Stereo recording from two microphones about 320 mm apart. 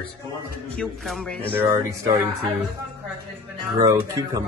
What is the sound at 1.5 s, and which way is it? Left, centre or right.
Speech, centre.